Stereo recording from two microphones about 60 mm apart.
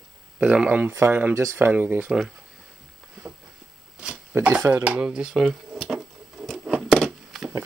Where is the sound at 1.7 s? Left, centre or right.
Right.